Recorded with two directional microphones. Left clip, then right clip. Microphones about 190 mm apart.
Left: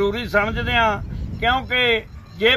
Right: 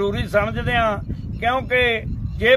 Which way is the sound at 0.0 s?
20° right (ahead or behind).